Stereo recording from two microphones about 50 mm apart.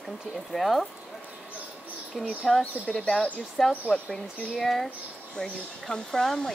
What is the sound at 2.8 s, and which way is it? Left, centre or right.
Speech, left.